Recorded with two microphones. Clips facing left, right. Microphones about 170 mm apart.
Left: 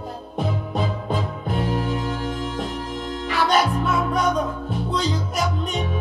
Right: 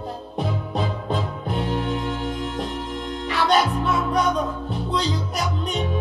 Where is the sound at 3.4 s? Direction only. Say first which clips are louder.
Even; centre (ahead or behind).